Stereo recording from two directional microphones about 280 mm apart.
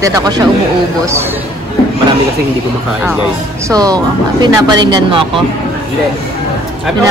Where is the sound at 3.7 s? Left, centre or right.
Centre.